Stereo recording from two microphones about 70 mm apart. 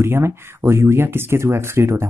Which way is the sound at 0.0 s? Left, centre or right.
Right.